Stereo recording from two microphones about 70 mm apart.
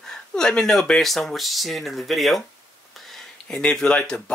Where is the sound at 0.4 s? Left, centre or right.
Centre.